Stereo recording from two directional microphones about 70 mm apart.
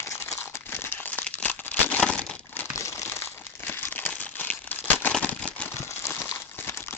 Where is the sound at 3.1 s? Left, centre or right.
Left.